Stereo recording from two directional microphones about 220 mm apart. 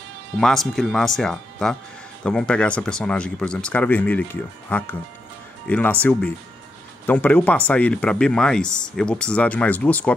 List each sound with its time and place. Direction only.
0.4 s speech: centre (ahead or behind)
7.1 s speech: 5° left (ahead or behind)